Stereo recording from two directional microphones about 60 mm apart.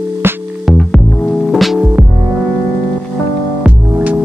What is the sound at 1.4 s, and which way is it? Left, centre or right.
Music, centre.